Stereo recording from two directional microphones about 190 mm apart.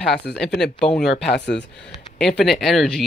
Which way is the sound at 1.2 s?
60° left (ahead or behind).